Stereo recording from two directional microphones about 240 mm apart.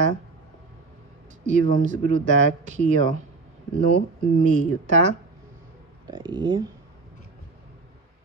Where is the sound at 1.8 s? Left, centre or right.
Right.